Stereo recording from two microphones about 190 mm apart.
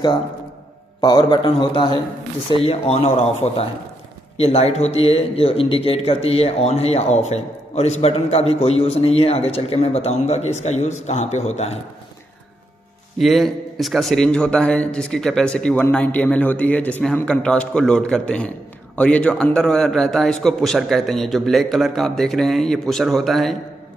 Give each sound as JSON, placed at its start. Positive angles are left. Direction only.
{"t": 1.0, "sound": "a man's voice", "side_deg": 20}
{"t": 13.2, "sound": "a man's voice", "side_deg": 0}